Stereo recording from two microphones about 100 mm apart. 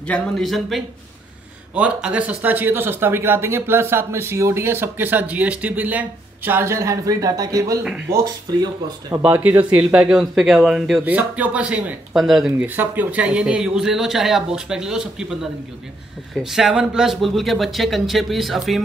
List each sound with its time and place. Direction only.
0.0 s speech: 10° left (ahead or behind)
0.5 s speech: centre (ahead or behind)
1.8 s speech: 10° right (ahead or behind); by 8.6 s 40° right (ahead or behind)
9.2 s speech: 20° right (ahead or behind)
11.1 s speech: 15° right (ahead or behind)
12.5 s speech: 20° right (ahead or behind)
16.4 s speech: 5° right (ahead or behind)